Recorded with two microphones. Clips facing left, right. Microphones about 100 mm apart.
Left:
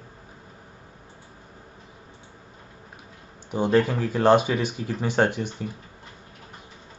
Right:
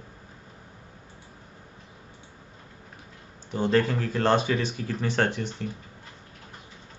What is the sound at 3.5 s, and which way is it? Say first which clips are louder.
Speech: left 2 dB; 15° left (ahead or behind).